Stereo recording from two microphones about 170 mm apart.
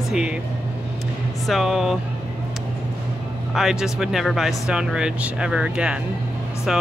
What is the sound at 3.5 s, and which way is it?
Speech, centre (ahead or behind).